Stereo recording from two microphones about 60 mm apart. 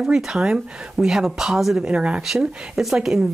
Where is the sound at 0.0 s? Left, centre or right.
Centre.